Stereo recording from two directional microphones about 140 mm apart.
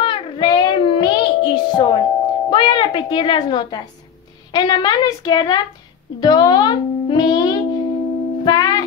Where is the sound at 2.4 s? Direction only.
35° left (ahead or behind).